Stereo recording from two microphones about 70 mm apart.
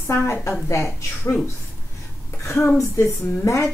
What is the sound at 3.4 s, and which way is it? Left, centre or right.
Speech, left.